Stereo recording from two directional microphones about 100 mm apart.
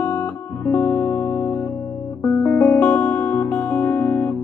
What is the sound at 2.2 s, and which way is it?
Music, 15° left (ahead or behind).